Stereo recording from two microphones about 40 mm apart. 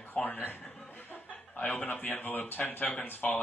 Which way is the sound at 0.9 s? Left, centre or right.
Left.